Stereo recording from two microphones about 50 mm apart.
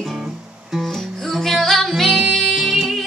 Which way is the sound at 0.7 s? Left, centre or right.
Centre.